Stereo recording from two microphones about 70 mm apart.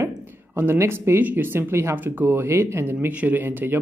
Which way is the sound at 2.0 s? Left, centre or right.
Right.